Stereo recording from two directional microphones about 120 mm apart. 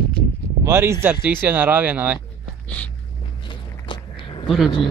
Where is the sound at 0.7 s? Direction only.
20° right (ahead or behind).